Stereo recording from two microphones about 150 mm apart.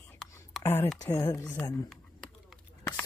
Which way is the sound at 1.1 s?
20° left (ahead or behind).